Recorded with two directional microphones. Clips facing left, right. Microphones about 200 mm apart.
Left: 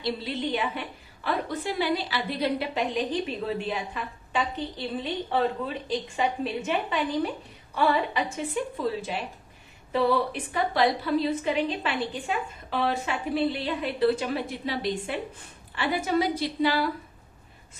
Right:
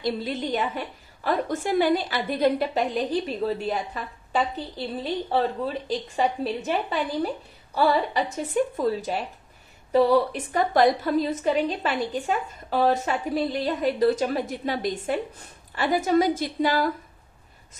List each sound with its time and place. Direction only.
0.0 s a woman's voice: 45° right (ahead or behind)
5.9 s a woman's voice: 35° right (ahead or behind)